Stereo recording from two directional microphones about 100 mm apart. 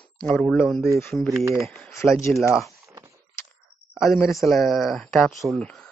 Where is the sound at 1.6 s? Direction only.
Centre (ahead or behind).